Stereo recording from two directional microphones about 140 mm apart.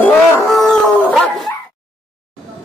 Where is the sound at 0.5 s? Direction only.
Centre (ahead or behind).